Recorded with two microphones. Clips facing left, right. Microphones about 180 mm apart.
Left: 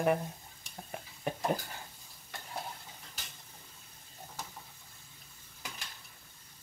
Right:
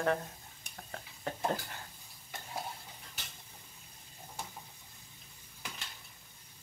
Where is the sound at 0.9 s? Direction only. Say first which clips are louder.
Left 3 dB; 15° left (ahead or behind).